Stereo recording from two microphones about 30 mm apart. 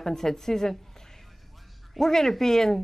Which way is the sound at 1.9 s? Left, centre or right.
Centre.